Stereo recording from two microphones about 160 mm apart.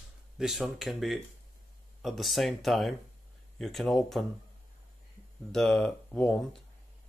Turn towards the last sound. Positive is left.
turn(degrees=5)  # may be behind; listen again after turning